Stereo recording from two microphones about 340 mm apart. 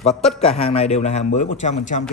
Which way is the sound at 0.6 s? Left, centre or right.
Centre.